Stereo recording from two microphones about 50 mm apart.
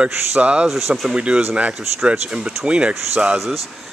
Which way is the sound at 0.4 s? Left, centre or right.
Right.